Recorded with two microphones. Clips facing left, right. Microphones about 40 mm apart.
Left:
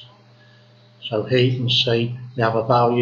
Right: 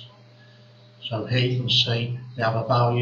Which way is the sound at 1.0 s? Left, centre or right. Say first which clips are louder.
Left 7 dB; centre.